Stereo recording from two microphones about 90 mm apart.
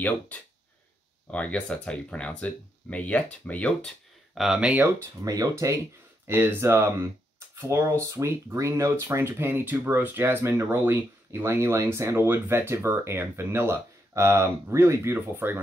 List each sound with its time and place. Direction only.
1.3 s speech: 15° left (ahead or behind)
4.4 s speech: 10° right (ahead or behind)
5.2 s speech: 40° right (ahead or behind)
6.2 s speech: 25° right (ahead or behind)